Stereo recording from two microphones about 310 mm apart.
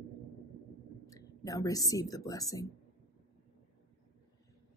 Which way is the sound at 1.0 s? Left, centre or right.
Centre.